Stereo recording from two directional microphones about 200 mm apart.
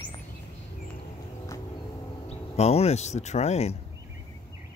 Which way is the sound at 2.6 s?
30° left (ahead or behind).